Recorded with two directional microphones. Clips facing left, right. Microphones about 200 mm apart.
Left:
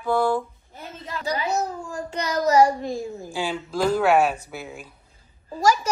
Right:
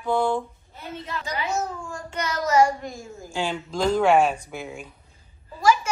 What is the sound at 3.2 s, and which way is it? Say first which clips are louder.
Speech: even; 10° left (ahead or behind).